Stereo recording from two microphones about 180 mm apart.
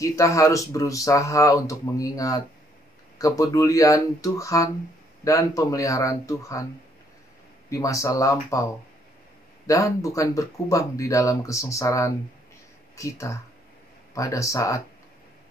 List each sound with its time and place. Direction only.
0.0 s speech: 15° left (ahead or behind)
7.7 s speech: 15° left (ahead or behind)
9.7 s speech: 15° left (ahead or behind)